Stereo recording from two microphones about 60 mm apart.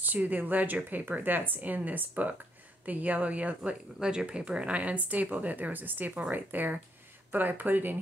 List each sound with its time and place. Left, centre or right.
0.0 s speech: right
4.0 s speech: centre; by 8.0 s right